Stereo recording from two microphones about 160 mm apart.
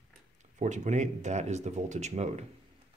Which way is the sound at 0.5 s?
50° right (ahead or behind).